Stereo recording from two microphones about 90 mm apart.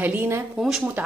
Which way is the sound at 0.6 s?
5° right (ahead or behind).